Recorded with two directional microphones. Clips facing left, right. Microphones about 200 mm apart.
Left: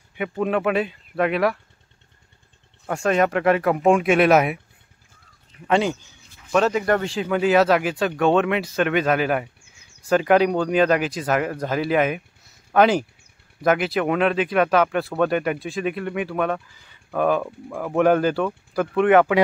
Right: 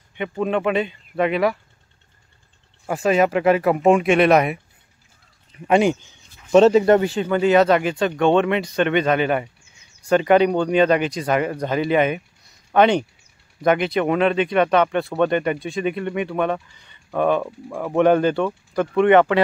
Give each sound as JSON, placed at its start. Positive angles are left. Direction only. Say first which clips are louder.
{"t": 0.1, "sound": "speech", "louder": "right 1 dB", "side_deg": 5}
{"t": 2.9, "sound": "speech", "louder": "right 2 dB", "side_deg": -5}
{"t": 5.7, "sound": "speech", "louder": "right 4 dB", "side_deg": -15}
{"t": 6.5, "sound": "speech", "louder": "right 7 dB", "side_deg": -25}
{"t": 7.0, "sound": "speech", "louder": "right 3 dB", "side_deg": 0}